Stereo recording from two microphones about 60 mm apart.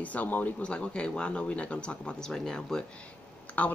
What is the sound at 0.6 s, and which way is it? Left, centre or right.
Speech, centre.